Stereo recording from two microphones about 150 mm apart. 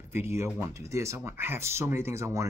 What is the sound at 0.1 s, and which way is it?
Speech, 15° right (ahead or behind).